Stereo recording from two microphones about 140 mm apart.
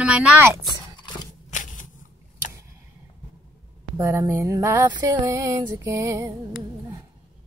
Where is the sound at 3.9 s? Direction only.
20° right (ahead or behind).